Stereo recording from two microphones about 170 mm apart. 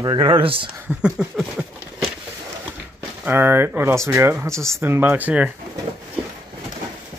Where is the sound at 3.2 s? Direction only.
10° right (ahead or behind).